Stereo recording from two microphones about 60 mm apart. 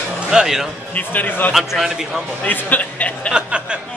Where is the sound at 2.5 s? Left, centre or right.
Left.